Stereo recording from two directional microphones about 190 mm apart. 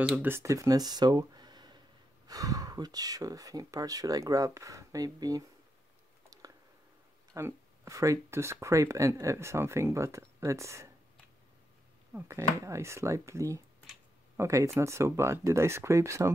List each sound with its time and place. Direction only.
0.0 s speech: 10° right (ahead or behind)
7.3 s speech: 15° right (ahead or behind)
12.1 s speech: 10° right (ahead or behind)